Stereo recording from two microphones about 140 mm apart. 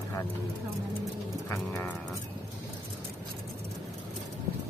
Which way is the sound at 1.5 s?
15° left (ahead or behind).